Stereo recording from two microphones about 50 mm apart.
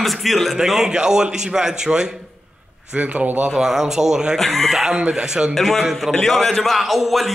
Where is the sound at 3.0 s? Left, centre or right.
Right.